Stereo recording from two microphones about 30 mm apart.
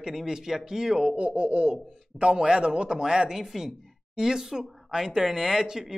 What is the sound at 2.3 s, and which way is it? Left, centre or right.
Speech, right.